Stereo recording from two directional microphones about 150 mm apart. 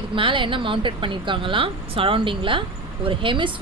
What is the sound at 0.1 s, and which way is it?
A woman's voice, 35° right (ahead or behind).